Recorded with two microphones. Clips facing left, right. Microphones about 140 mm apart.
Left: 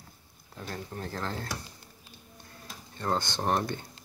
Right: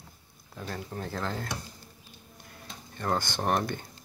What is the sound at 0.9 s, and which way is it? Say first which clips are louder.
Speech: right 1 dB; 30° right (ahead or behind).